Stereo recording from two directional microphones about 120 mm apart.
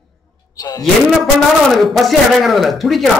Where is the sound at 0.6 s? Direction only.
30° left (ahead or behind).